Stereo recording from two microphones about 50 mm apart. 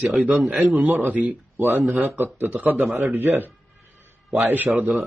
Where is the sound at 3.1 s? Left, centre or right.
Right.